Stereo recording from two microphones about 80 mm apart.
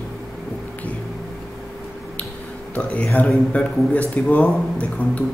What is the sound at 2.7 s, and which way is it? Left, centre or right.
Speech, centre.